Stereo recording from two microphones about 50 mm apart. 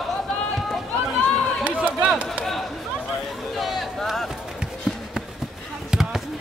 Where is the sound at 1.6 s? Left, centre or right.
Right.